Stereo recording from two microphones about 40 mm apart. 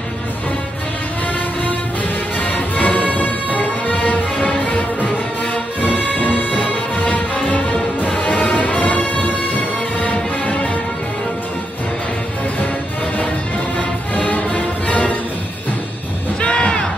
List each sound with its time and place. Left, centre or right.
2.4 s music: left
5.5 s music: left
13.7 s music: left
16.3 s music: left